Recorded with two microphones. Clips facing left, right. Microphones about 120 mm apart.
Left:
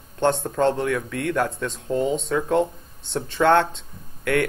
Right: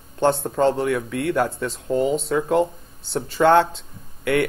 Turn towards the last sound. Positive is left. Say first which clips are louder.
# right 2 dB
turn(degrees=0)  # may be behind; listen again after turning